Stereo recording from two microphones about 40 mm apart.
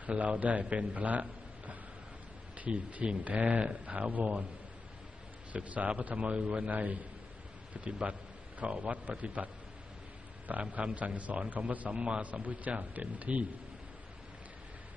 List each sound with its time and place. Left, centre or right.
0.0 s a man's voice: right
5.5 s a man's voice: right
6.7 s a man's voice: right
10.5 s a man's voice: right
11.9 s a man's voice: right
12.3 s a man's voice: right